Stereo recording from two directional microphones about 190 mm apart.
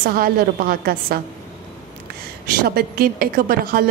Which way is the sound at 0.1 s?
50° right (ahead or behind).